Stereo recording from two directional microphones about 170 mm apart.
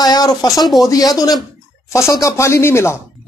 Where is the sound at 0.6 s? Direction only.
Centre (ahead or behind).